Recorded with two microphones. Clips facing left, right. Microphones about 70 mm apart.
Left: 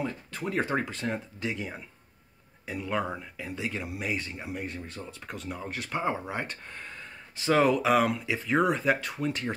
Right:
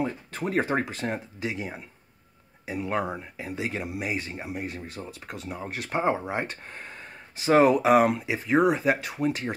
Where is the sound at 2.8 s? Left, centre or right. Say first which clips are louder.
Right 2 dB; right.